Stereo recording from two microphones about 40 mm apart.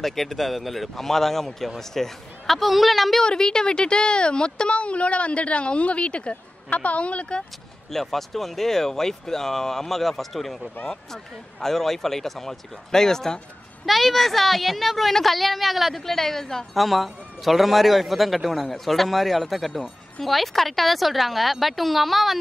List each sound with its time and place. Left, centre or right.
0.0 s a man's voice: centre
3.2 s speech: centre
7.9 s speech: centre
13.8 s a man's voice: centre